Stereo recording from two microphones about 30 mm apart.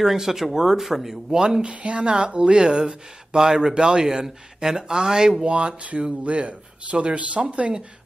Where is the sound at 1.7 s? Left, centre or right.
Right.